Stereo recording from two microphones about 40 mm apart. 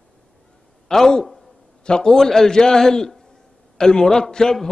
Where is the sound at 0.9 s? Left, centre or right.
Centre.